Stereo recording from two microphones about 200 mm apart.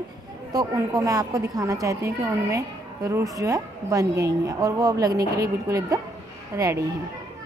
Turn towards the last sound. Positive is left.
turn(degrees=-15)  # may be behind; listen again after turning